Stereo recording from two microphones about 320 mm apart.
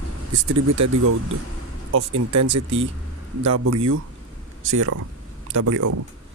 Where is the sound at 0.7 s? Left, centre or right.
Right.